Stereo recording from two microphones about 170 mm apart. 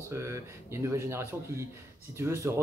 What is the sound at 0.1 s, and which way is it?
Speech, 15° right (ahead or behind).